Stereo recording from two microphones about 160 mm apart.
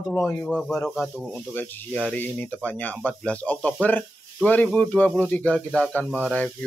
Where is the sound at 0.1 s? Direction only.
10° left (ahead or behind).